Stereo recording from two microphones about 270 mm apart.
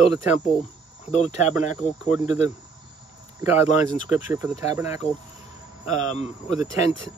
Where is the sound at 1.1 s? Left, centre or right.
Left.